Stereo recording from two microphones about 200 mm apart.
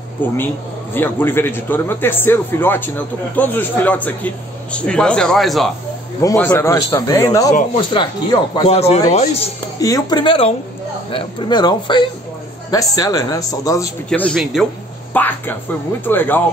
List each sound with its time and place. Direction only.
0.2 s a man's voice: 10° left (ahead or behind); by 9.5 s 30° left (ahead or behind)
9.8 s speech: 15° left (ahead or behind)
14.0 s a man's voice: 5° left (ahead or behind)